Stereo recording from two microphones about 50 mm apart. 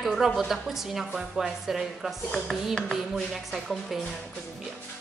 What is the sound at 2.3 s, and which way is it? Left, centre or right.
Speech, centre.